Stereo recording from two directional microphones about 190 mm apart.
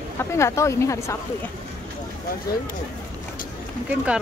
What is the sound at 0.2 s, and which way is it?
Speech, 15° left (ahead or behind).